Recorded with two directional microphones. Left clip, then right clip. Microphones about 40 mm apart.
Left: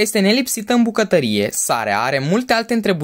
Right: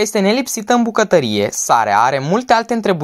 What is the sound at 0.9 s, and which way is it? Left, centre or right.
Speech, right.